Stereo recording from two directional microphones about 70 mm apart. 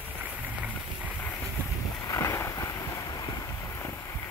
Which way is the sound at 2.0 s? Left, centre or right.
Left.